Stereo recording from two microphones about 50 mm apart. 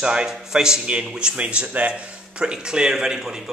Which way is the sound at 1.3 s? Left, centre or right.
Right.